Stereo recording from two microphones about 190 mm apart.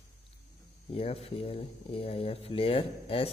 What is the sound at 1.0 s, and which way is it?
A man's voice, 30° left (ahead or behind).